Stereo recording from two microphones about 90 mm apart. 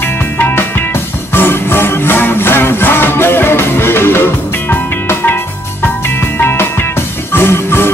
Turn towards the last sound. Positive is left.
turn(degrees=25)  # may be behind; listen again after turning